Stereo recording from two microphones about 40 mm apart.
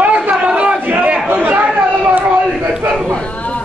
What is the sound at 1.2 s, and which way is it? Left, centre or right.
Chatter, right.